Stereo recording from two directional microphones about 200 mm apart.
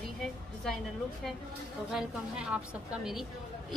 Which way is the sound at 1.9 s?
5° right (ahead or behind).